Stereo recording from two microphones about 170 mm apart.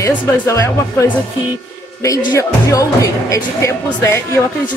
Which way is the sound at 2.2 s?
20° left (ahead or behind).